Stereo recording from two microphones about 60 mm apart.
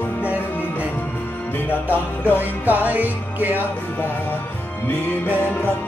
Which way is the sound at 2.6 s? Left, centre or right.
Right.